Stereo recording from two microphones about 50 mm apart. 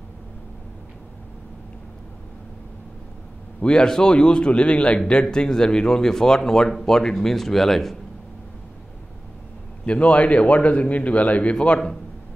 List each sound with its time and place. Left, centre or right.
3.6 s a man's voice: centre
9.8 s a man's voice: left